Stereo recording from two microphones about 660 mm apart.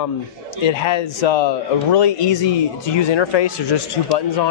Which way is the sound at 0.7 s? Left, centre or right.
Left.